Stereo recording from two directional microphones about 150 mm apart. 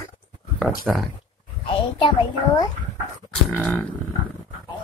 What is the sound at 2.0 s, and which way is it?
Speech, 30° left (ahead or behind).